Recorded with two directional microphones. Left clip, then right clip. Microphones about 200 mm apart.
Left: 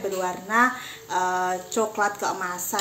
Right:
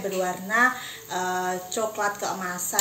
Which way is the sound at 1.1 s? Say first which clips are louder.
Left 3 dB; 50° left (ahead or behind).